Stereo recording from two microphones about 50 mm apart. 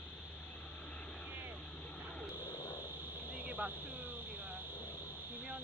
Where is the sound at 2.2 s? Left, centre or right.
Left.